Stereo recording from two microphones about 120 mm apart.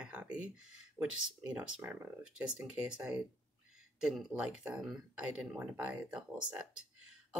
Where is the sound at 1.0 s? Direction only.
30° right (ahead or behind).